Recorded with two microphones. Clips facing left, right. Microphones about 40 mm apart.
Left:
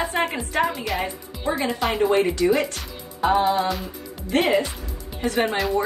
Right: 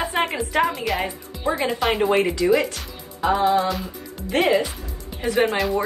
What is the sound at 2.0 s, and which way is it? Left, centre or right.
Speech, right.